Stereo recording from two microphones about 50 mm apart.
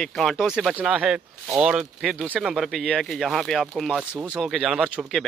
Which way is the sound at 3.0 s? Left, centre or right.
Centre.